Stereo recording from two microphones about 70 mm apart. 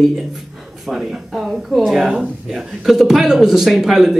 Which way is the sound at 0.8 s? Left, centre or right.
Centre.